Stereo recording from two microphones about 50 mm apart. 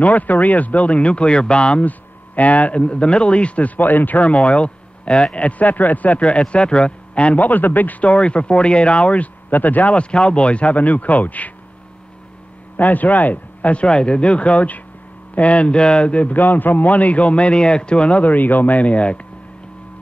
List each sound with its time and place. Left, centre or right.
0.0 s a man's voice: left
1.9 s a man's voice: left
8.1 s a man's voice: left
12.7 s a man's voice: left